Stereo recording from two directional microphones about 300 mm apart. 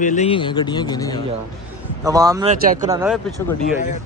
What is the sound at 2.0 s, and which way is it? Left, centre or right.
Speech, centre.